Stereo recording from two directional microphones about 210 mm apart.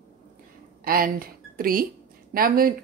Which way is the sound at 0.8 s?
45° right (ahead or behind).